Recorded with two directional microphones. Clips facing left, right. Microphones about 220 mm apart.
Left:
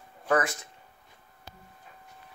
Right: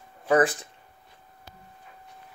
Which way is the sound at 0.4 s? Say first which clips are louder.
Right 8 dB; 30° right (ahead or behind).